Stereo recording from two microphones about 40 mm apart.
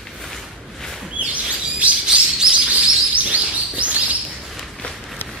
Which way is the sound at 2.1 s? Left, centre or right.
Right.